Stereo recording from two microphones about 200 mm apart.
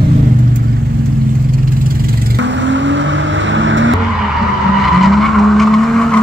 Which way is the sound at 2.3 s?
65° right (ahead or behind).